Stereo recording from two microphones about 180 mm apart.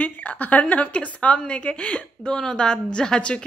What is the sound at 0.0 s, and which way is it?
A woman's voice, 10° left (ahead or behind).